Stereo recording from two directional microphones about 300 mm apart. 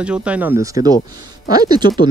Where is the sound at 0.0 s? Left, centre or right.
Centre.